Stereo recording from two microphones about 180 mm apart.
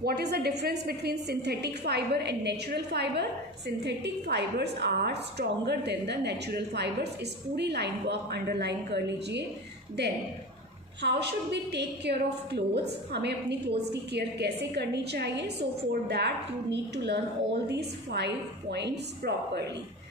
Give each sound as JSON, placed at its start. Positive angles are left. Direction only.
{"t": 0.0, "sound": "a woman's voice", "side_deg": -65}
{"t": 11.0, "sound": "a woman's voice", "side_deg": -70}